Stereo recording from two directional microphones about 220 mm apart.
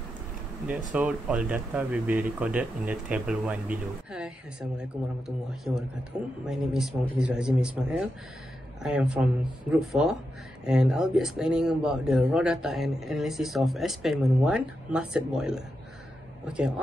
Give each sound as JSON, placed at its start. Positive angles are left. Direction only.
{"t": 0.7, "sound": "speech", "side_deg": -5}